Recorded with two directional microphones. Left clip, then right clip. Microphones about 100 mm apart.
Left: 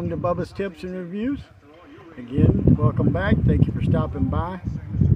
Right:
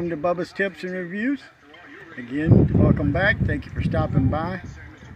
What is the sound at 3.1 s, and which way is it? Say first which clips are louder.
Speech: right 3 dB; 30° left (ahead or behind).